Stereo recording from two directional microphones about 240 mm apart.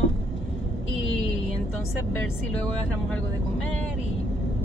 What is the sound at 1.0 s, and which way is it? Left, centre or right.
Vehicle, left.